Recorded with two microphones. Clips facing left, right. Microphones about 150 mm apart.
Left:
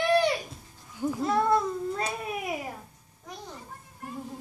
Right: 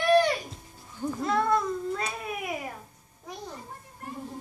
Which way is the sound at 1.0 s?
10° left (ahead or behind).